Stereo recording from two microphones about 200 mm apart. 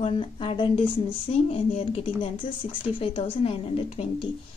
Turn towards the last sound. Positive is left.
turn(degrees=25)  # may be behind; listen again after turning